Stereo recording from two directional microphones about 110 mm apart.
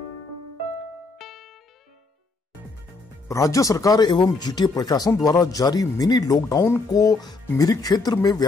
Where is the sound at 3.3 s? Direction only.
30° left (ahead or behind).